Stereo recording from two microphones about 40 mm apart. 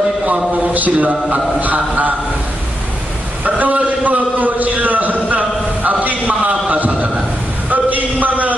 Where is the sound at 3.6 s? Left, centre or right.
Right.